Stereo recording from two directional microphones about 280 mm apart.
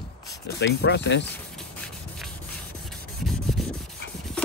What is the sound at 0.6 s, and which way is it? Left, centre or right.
Speech, left.